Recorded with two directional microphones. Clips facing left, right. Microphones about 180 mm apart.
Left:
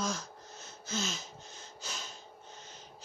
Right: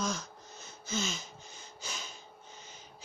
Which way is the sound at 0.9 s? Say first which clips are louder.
Right 1 dB; 5° left (ahead or behind).